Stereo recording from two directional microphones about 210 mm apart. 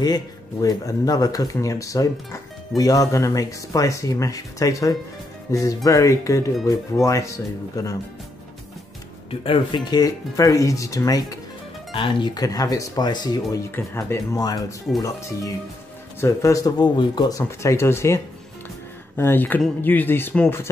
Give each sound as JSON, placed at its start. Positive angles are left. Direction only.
{"t": 0.0, "sound": "speech", "side_deg": 20}
{"t": 9.3, "sound": "speech", "side_deg": 25}